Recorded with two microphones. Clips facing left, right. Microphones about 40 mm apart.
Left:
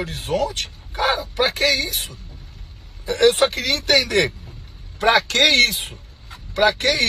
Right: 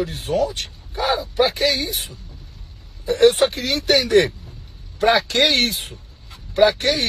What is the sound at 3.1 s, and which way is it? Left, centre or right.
Speech, left.